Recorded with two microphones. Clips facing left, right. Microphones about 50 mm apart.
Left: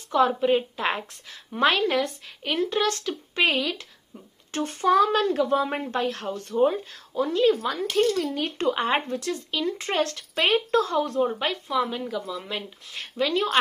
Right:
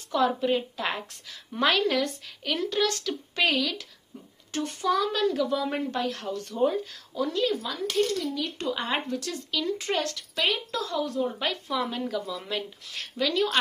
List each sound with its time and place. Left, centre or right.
0.3 s speech: left
6.5 s speech: left
6.8 s speech: left
11.3 s speech: left
11.7 s speech: centre
12.4 s speech: left